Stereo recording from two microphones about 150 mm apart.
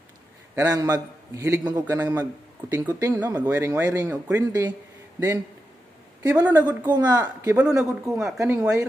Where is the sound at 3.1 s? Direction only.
10° right (ahead or behind).